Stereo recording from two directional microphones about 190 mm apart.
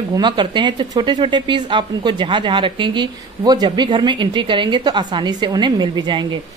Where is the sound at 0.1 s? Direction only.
25° right (ahead or behind).